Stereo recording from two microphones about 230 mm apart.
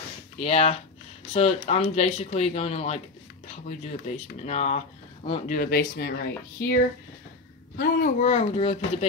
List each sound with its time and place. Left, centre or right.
0.4 s speech: left
5.6 s speech: left
8.2 s speech: left